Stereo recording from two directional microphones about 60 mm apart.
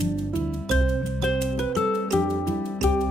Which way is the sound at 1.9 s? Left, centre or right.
Centre.